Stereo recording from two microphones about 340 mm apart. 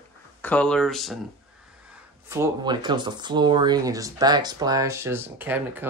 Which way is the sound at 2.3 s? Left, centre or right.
Centre.